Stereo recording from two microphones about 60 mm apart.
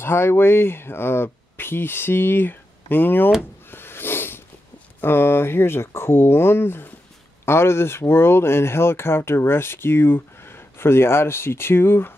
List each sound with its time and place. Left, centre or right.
0.0 s speech: left
3.7 s a sound: left
5.0 s speech: left